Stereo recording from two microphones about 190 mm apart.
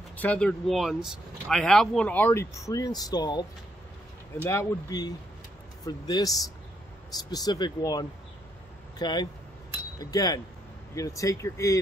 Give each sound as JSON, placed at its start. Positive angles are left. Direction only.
{"t": 0.2, "sound": "speech", "side_deg": 10}
{"t": 4.5, "sound": "speech", "side_deg": 15}